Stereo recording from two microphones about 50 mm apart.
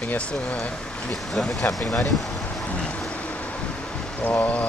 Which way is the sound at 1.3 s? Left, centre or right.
Centre.